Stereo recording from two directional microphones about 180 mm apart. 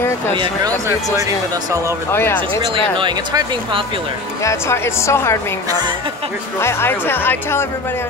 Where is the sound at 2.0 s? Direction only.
15° left (ahead or behind).